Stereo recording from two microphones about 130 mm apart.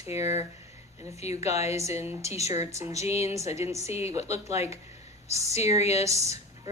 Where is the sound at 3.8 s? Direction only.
55° left (ahead or behind).